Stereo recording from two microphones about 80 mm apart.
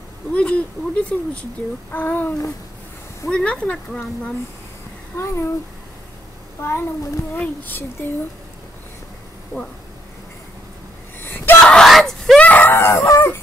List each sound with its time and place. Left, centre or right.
0.3 s speech: centre
5.1 s speech: left
7.3 s speech: left
11.1 s a sound: left
11.6 s screaming: centre
12.4 s a sound: centre